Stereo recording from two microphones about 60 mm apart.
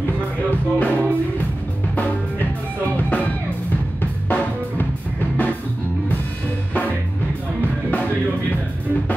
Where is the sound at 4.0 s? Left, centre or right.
Left.